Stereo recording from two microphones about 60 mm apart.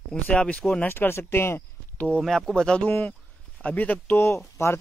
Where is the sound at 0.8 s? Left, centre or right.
Left.